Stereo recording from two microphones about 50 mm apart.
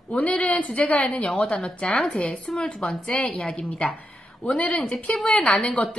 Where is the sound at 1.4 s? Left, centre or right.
Centre.